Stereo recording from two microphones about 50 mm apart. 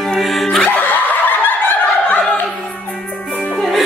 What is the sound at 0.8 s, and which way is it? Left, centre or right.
Snicker, left.